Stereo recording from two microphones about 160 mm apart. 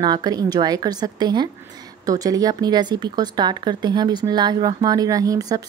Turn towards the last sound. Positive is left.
turn(degrees=-20)  # may be behind; listen again after turning